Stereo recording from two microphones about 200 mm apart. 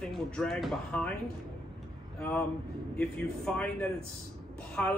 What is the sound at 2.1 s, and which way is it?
A man's voice, 5° left (ahead or behind).